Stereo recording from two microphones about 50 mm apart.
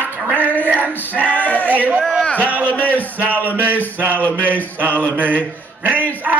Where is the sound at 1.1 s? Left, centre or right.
Left.